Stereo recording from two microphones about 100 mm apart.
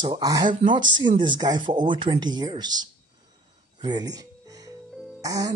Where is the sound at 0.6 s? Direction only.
50° right (ahead or behind).